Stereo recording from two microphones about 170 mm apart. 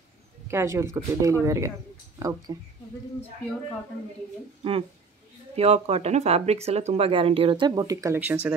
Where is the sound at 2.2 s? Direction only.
20° right (ahead or behind).